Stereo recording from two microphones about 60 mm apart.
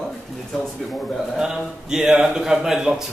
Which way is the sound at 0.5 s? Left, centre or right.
Centre.